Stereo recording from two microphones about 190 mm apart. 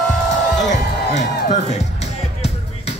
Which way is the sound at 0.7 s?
40° left (ahead or behind).